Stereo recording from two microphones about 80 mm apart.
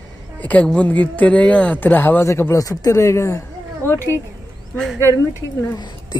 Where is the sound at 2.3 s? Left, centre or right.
Left.